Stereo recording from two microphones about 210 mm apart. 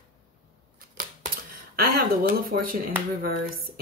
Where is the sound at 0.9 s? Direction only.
40° right (ahead or behind).